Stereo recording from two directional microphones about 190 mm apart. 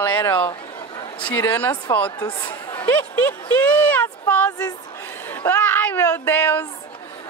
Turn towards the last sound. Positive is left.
turn(degrees=10)  # may be behind; listen again after turning